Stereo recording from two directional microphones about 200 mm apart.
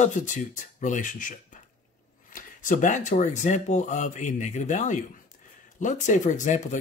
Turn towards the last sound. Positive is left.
turn(degrees=40)  # may be behind; listen again after turning